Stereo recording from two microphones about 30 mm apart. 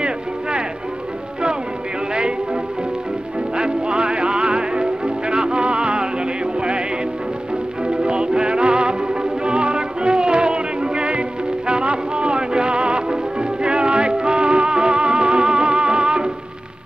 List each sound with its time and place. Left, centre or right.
0.0 s a sound: right
2.1 s music: right
7.8 s music: right